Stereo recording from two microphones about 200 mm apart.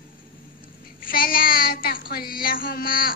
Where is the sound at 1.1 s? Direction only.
45° left (ahead or behind).